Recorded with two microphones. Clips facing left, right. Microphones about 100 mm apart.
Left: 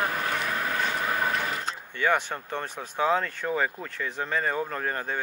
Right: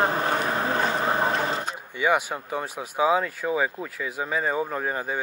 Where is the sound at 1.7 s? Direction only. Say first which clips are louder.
Left 1 dB; 10° right (ahead or behind).